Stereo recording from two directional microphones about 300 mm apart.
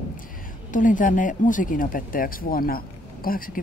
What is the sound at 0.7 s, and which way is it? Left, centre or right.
Speech, left.